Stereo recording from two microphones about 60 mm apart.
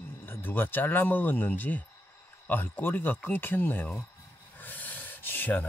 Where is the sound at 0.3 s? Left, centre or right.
Left.